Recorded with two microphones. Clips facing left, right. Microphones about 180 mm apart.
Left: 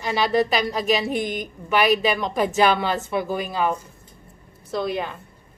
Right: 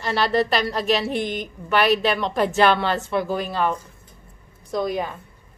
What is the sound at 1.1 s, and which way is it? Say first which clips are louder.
Speech: even; 45° left (ahead or behind).